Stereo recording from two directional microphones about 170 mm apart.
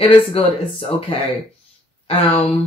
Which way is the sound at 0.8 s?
30° left (ahead or behind).